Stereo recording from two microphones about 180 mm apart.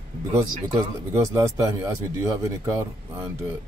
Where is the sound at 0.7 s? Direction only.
20° right (ahead or behind).